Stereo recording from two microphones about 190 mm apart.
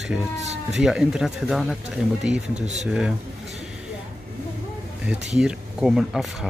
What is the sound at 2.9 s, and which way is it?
Speech, 5° right (ahead or behind).